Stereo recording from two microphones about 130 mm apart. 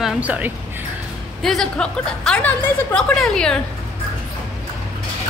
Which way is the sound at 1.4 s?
5° left (ahead or behind).